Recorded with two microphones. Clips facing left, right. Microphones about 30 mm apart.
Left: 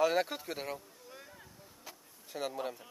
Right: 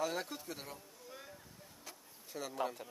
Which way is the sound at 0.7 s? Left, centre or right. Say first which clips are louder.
Left 2 dB; centre.